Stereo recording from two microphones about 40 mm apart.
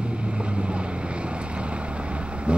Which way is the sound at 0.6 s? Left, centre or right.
Right.